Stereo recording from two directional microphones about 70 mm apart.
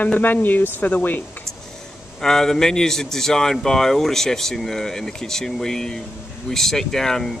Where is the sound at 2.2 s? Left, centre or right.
Centre.